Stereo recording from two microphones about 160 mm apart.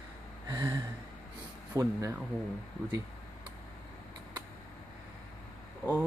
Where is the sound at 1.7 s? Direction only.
20° right (ahead or behind).